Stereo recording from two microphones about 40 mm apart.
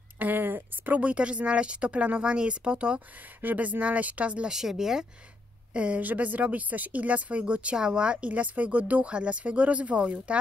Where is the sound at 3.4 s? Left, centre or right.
Right.